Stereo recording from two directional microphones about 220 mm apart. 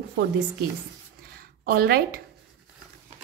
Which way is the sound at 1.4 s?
45° right (ahead or behind).